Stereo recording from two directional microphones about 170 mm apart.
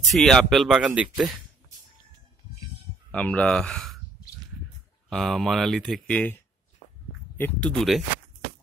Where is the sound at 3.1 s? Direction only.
10° left (ahead or behind).